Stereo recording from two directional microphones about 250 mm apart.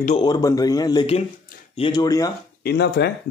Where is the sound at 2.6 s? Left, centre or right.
Left.